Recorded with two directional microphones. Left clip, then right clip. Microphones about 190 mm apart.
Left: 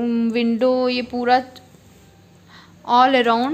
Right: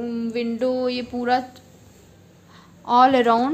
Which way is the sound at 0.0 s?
45° left (ahead or behind).